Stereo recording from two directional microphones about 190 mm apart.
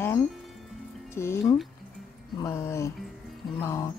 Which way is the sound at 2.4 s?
15° left (ahead or behind).